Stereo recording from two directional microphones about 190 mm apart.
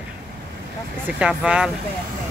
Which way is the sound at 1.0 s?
5° right (ahead or behind).